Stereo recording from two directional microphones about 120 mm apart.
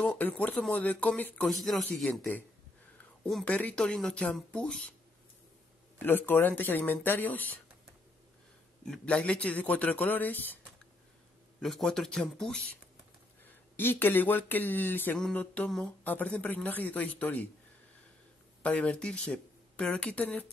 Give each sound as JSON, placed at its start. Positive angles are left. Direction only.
{"t": 0.0, "sound": "speech", "side_deg": 10}
{"t": 1.5, "sound": "speech", "side_deg": 0}
{"t": 2.0, "sound": "speech", "side_deg": 15}
{"t": 3.4, "sound": "speech", "side_deg": 10}
{"t": 6.0, "sound": "speech", "side_deg": 15}
{"t": 8.8, "sound": "speech", "side_deg": 5}
{"t": 11.6, "sound": "speech", "side_deg": 0}
{"t": 13.7, "sound": "speech", "side_deg": 15}
{"t": 18.6, "sound": "speech", "side_deg": 10}